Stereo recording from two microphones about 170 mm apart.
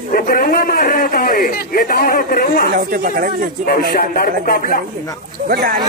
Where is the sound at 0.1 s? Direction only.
55° left (ahead or behind).